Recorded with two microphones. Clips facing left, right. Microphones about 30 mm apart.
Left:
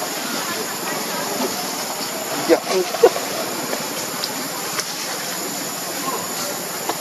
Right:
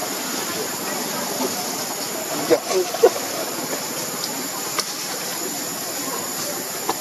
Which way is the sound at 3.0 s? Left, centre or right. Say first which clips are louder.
Left 2 dB; left.